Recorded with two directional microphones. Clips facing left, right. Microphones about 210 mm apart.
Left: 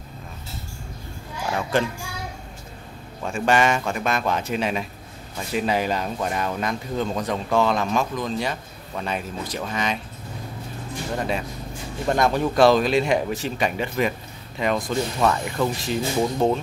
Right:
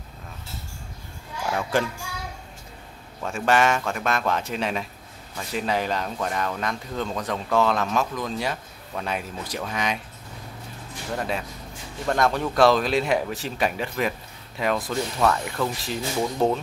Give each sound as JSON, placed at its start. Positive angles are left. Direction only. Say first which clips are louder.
{"t": 1.5, "sound": "speech", "louder": "left 1 dB", "side_deg": -5}
{"t": 3.2, "sound": "speech", "louder": "left 1 dB", "side_deg": 0}
{"t": 11.1, "sound": "speech", "louder": "left 1 dB", "side_deg": 0}